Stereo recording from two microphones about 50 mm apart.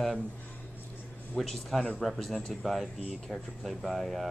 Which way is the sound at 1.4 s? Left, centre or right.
Centre.